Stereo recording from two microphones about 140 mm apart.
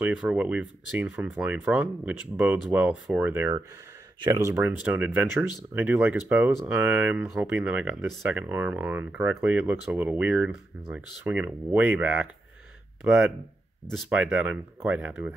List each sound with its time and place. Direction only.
0.0 s speech: 10° right (ahead or behind)